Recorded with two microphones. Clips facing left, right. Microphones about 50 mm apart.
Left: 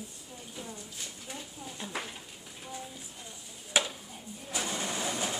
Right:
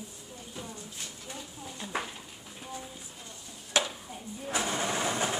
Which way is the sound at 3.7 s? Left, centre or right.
Centre.